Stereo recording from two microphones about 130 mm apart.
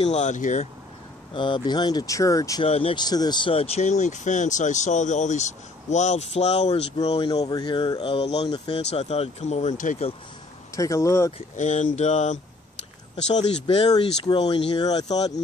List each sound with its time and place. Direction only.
0.0 s speech: 65° left (ahead or behind)
1.3 s speech: 40° left (ahead or behind)
2.6 s speech: 45° left (ahead or behind)
3.1 s speech: 30° left (ahead or behind); by 7.2 s 50° left (ahead or behind)
7.2 s speech: 30° left (ahead or behind); by 8.5 s 50° left (ahead or behind)
8.5 s speech: 35° left (ahead or behind)
8.9 s speech: 50° left (ahead or behind); by 9.9 s 70° left (ahead or behind)
10.8 s speech: 25° left (ahead or behind)
11.5 s speech: 70° left (ahead or behind)
14.2 s speech: 35° left (ahead or behind)